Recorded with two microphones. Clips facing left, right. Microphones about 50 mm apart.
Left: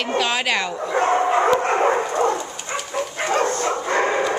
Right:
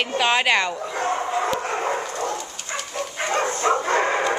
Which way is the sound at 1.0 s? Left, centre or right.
Left.